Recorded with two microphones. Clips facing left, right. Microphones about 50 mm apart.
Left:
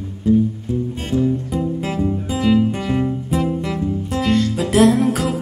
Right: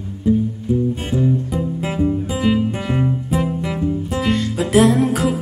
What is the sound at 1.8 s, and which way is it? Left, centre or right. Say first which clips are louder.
Music: right 2 dB; centre.